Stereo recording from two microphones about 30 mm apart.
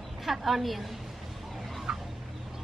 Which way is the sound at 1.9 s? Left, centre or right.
Right.